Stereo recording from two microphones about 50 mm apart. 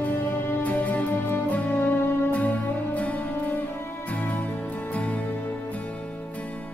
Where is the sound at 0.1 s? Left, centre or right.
Left.